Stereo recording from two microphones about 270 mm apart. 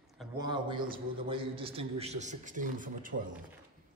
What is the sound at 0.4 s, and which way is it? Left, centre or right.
A man's voice, centre.